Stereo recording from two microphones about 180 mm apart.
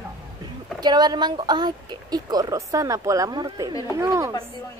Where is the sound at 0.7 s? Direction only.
25° right (ahead or behind).